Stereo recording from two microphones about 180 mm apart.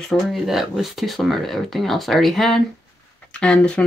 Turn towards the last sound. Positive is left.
turn(degrees=5)  # may be behind; listen again after turning